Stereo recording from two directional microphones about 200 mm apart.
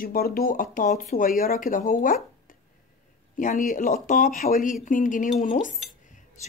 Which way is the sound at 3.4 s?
40° left (ahead or behind).